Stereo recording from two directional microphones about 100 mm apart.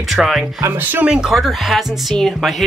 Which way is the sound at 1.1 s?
5° right (ahead or behind).